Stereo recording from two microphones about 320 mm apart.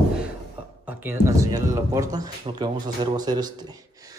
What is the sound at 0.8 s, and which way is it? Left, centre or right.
Speech, centre.